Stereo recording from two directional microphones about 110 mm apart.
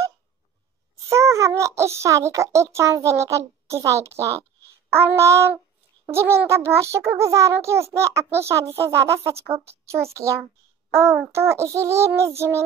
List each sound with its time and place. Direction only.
1.0 s a child's voice: 25° right (ahead or behind)